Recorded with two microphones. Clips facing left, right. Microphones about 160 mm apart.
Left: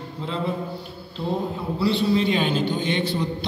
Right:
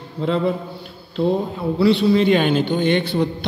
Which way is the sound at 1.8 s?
65° right (ahead or behind).